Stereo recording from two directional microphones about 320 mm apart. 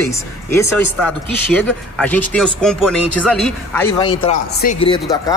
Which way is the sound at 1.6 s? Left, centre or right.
Centre.